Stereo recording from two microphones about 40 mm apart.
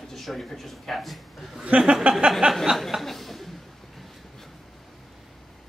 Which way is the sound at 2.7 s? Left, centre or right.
Centre.